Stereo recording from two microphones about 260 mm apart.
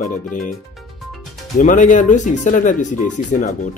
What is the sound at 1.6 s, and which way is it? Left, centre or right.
Speech, left.